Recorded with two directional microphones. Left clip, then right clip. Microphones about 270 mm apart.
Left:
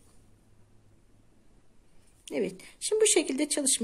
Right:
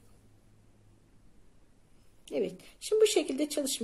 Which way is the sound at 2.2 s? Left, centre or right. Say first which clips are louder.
Left 1 dB; centre.